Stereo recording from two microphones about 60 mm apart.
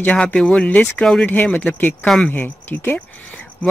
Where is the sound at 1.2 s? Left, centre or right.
Left.